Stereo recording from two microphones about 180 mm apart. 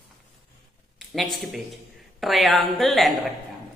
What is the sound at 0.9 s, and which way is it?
Speech, centre (ahead or behind).